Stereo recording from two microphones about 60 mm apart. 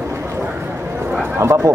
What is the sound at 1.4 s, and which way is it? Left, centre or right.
Speech, right.